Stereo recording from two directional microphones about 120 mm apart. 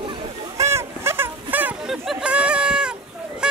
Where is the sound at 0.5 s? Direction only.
25° right (ahead or behind).